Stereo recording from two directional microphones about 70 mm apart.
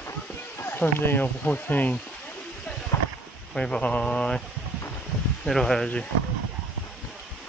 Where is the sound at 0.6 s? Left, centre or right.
Left.